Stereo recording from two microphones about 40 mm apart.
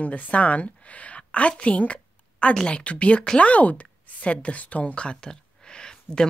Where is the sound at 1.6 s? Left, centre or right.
Left.